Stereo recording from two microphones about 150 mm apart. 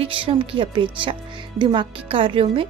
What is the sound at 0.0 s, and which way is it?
A woman's voice, 35° right (ahead or behind).